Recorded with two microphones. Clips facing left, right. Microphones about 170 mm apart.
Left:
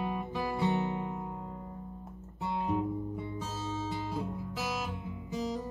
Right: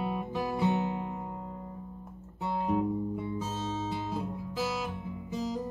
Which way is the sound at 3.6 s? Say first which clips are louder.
Right 2 dB; 25° right (ahead or behind).